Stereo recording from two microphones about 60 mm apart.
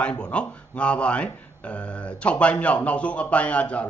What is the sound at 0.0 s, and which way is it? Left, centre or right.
Speech, centre.